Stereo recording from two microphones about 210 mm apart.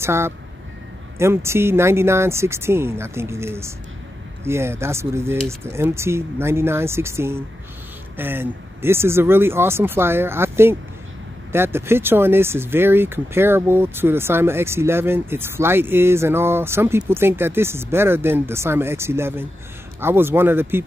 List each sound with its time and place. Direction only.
0.0 s speech: 10° right (ahead or behind)